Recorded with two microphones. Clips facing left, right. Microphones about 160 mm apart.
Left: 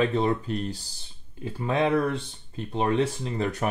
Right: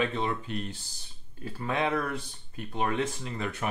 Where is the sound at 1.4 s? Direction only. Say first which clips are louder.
Left 5 dB; 25° left (ahead or behind).